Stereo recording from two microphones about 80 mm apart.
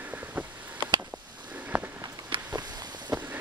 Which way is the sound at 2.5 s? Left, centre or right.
Right.